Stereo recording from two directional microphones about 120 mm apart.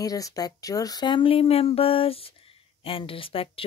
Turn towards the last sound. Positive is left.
turn(degrees=50)  # may be behind; listen again after turning